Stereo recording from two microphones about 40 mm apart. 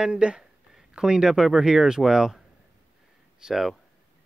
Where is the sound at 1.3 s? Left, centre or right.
Centre.